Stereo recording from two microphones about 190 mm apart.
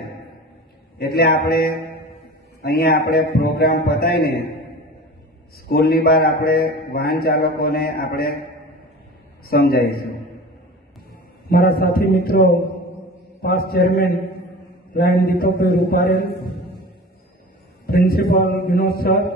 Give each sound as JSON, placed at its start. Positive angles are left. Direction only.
{"t": 0.9, "sound": "a man's voice", "side_deg": 55}
{"t": 5.7, "sound": "a man's voice", "side_deg": 50}
{"t": 9.5, "sound": "a man's voice", "side_deg": 55}
{"t": 11.4, "sound": "a man's voice", "side_deg": 55}
{"t": 17.8, "sound": "a man's voice", "side_deg": 50}